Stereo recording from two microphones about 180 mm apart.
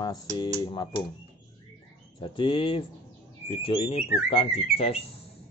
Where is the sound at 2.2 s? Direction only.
30° left (ahead or behind).